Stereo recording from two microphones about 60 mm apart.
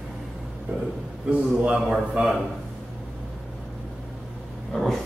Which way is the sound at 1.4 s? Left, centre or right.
Centre.